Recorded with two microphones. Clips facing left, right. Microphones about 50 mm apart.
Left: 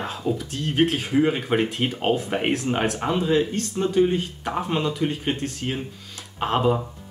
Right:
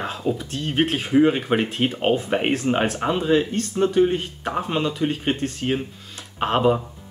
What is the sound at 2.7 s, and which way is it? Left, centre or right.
Speech, right.